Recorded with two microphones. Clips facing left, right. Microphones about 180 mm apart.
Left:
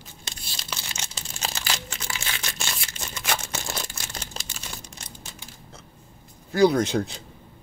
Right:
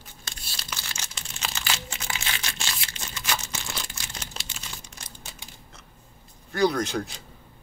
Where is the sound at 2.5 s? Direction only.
50° left (ahead or behind).